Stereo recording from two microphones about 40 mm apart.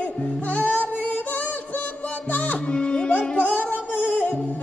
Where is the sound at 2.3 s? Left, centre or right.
Left.